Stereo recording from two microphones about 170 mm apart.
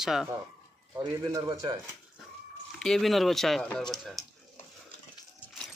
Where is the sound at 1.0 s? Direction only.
20° right (ahead or behind).